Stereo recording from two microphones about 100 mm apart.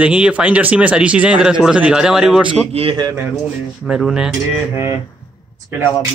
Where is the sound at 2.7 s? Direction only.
70° right (ahead or behind).